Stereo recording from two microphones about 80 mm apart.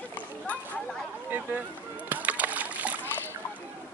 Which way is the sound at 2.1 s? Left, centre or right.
Centre.